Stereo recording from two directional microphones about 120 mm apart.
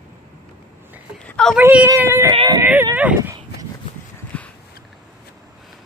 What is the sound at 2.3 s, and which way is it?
Speech, 35° right (ahead or behind).